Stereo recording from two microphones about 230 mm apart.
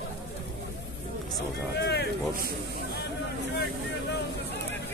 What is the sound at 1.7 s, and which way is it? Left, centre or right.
Speech, left.